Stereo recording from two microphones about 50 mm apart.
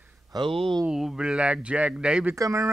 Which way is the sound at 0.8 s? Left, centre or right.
Centre.